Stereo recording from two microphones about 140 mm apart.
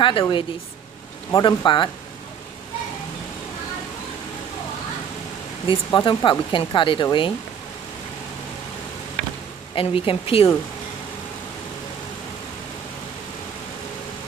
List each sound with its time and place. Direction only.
0.2 s speech: 35° left (ahead or behind)
5.7 s speech: 35° left (ahead or behind)
9.8 s speech: 40° left (ahead or behind)